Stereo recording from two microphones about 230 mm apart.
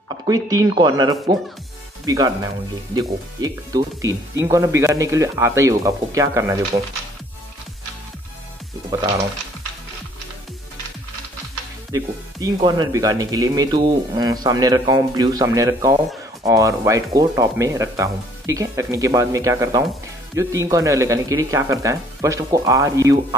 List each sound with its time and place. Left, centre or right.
0.3 s speech: centre
11.9 s speech: centre